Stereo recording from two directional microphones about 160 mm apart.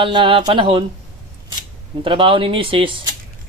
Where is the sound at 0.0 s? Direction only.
30° right (ahead or behind).